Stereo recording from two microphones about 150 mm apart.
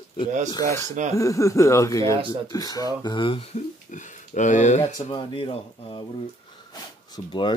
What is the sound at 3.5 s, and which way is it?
Speech, 55° left (ahead or behind).